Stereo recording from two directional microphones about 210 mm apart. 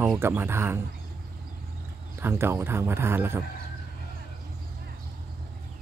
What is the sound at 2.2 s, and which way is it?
Speech, 10° right (ahead or behind).